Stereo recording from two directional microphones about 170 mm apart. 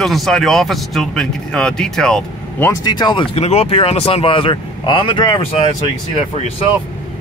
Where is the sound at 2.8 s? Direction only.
25° left (ahead or behind).